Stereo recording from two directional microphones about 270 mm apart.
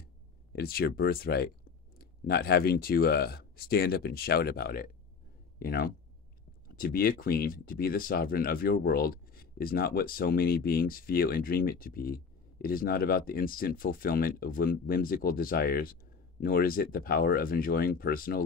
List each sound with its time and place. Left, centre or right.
0.0 s speech: left